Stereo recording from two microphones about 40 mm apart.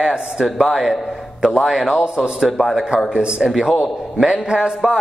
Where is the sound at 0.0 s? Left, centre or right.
Right.